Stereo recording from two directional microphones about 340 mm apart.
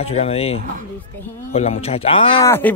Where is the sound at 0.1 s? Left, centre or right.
Centre.